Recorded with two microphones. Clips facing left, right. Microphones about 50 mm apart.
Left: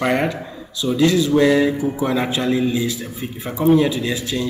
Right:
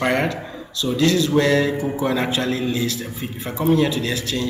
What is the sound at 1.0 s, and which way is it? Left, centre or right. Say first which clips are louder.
A man's voice: left 2 dB; centre.